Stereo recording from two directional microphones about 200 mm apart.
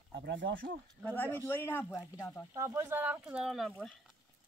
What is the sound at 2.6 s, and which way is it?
Speech, 15° right (ahead or behind).